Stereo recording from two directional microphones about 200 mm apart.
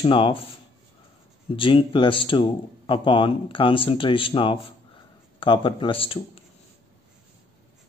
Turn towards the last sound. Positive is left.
turn(degrees=25)  # may be behind; listen again after turning